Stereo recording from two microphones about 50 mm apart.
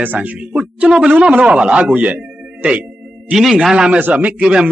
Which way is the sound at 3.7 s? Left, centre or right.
Centre.